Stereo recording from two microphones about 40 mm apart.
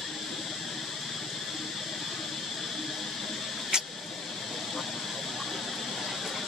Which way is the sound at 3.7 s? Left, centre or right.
Centre.